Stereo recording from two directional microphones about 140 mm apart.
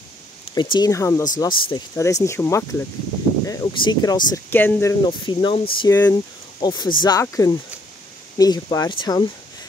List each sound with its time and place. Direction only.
0.6 s speech: 30° left (ahead or behind)
1.4 s speech: 35° left (ahead or behind)
2.0 s speech: 20° left (ahead or behind)
4.5 s speech: 15° left (ahead or behind)
5.0 s speech: 35° left (ahead or behind)
5.9 s speech: 25° left (ahead or behind)